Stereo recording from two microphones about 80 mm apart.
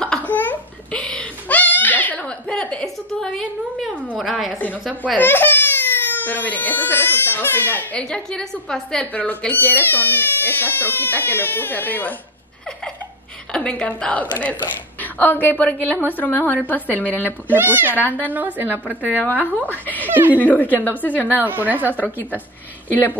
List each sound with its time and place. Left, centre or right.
0.3 s babbling: left
3.2 s a sound: centre
5.1 s speech: left
8.0 s a woman's voice: centre
13.5 s a woman's voice: centre
17.5 s a woman's voice: right
17.9 s speech: left
18.2 s a woman's voice: right
19.6 s speech: left
21.4 s a woman's voice: right
22.8 s speech: left